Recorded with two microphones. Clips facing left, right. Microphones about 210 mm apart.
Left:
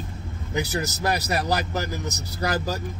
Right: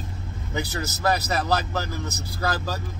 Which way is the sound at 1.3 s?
15° left (ahead or behind).